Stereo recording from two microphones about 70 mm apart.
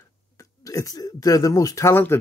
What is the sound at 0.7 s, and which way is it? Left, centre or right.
Speech, left.